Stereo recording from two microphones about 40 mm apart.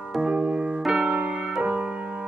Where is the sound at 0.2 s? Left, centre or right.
Right.